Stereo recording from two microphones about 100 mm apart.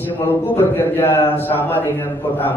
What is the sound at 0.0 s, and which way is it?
A man's voice, 20° left (ahead or behind).